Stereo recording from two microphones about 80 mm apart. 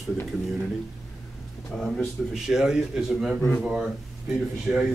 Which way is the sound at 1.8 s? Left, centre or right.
Centre.